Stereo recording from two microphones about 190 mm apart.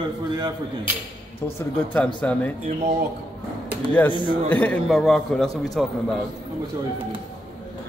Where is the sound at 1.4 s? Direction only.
10° left (ahead or behind).